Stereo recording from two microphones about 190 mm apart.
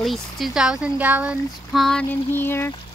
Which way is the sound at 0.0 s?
Centre (ahead or behind).